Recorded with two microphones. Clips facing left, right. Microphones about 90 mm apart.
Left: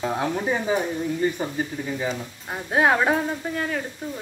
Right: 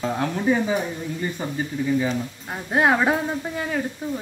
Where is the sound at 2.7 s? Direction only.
Centre (ahead or behind).